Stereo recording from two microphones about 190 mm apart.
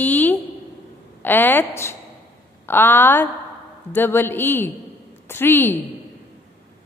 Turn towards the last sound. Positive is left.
turn(degrees=10)  # may be behind; listen again after turning